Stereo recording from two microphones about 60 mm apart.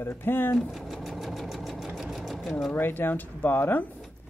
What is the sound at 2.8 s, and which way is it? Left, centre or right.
Speech, left.